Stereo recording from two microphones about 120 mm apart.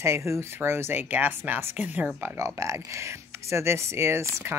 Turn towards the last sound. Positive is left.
turn(degrees=-20)  # may be behind; listen again after turning